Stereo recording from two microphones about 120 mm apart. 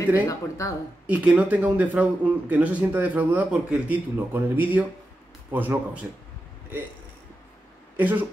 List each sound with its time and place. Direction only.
0.1 s speech: 25° left (ahead or behind)
1.0 s speech: 10° right (ahead or behind)
8.0 s speech: 15° right (ahead or behind)